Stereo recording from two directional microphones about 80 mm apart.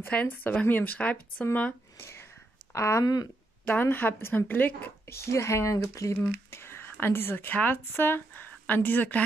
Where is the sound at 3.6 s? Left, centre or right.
Left.